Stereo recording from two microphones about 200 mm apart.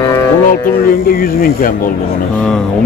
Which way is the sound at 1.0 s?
45° left (ahead or behind).